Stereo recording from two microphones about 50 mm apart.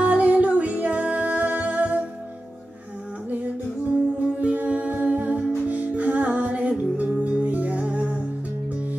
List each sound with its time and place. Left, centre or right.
0.0 s music: right
4.4 s humming: right
5.7 s music: right